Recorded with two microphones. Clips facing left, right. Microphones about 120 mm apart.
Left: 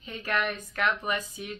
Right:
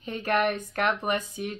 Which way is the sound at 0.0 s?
50° right (ahead or behind).